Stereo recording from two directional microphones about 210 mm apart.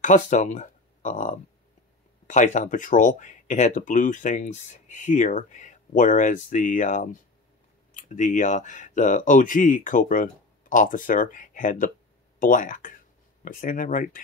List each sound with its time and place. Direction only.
0.0 s speech: 35° left (ahead or behind)